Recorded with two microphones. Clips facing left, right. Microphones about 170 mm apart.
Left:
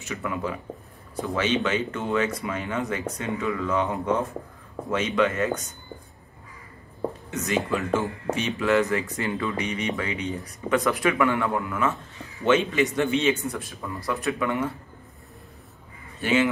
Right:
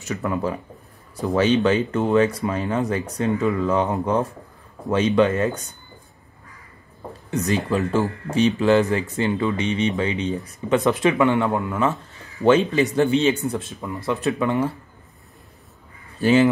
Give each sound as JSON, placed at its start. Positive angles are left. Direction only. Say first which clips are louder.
{"t": 0.0, "sound": "speech", "louder": "right 5 dB", "side_deg": -40}
{"t": 7.2, "sound": "speech", "louder": "right 5 dB", "side_deg": -35}
{"t": 16.2, "sound": "speech", "louder": "right 6 dB", "side_deg": -35}